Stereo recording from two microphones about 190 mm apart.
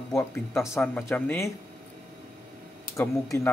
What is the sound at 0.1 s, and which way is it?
Speech, 15° left (ahead or behind).